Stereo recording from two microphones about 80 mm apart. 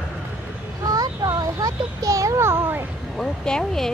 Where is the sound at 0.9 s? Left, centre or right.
Right.